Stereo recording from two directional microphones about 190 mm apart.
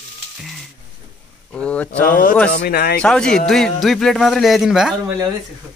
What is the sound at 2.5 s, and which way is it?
Speech, 55° left (ahead or behind).